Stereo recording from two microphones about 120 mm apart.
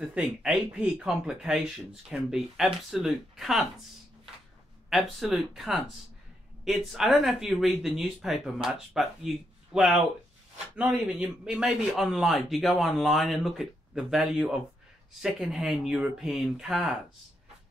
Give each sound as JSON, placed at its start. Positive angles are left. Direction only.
{"t": 0.0, "sound": "a man's voice", "side_deg": -5}
{"t": 4.8, "sound": "a man's voice", "side_deg": 0}